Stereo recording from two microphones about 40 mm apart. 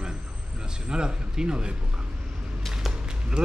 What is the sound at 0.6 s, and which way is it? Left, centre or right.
A man's voice, right.